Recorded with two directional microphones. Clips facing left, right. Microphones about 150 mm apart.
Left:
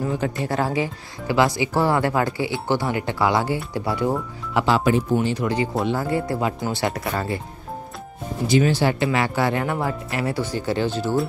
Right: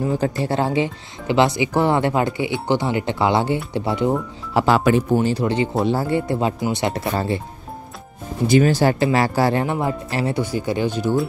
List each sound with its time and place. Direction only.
0.0 s speech: 30° right (ahead or behind)
4.7 s speech: 70° right (ahead or behind)
5.1 s speech: 35° right (ahead or behind)
8.5 s speech: 50° right (ahead or behind)
9.7 s speech: 20° right (ahead or behind)